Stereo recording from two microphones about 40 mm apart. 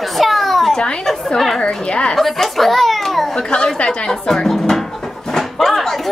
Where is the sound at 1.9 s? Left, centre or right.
Left.